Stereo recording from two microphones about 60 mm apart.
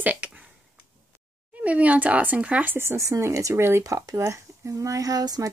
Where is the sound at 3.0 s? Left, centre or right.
Right.